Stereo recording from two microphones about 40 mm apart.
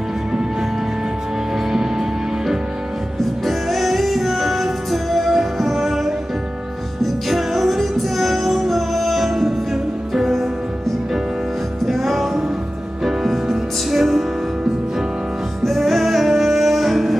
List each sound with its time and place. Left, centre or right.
1.7 s music: centre
11.8 s music: centre
15.6 s music: centre